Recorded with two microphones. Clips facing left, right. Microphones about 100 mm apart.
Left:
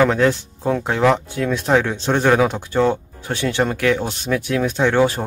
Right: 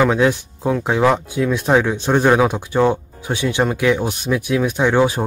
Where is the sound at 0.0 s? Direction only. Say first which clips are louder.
Even; 15° right (ahead or behind).